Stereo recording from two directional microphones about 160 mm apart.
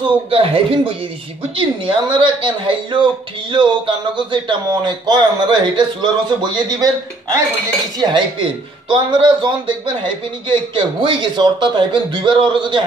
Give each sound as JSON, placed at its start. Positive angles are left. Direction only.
{"t": 0.0, "sound": "speech", "side_deg": -35}
{"t": 8.0, "sound": "speech", "side_deg": -30}